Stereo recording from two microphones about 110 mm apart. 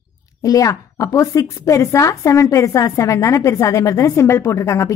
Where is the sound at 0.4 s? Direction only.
30° left (ahead or behind).